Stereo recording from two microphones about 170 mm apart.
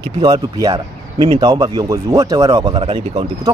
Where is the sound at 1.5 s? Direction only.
20° right (ahead or behind).